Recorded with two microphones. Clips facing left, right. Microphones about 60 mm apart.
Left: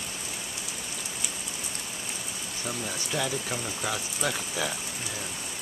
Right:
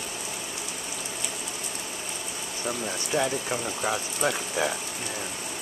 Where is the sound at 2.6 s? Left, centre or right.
Right.